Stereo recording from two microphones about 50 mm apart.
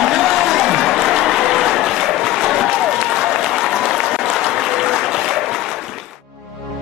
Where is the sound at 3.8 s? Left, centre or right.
Centre.